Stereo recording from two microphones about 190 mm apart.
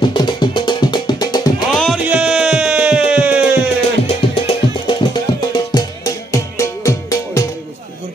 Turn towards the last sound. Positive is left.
turn(degrees=15)  # may be behind; listen again after turning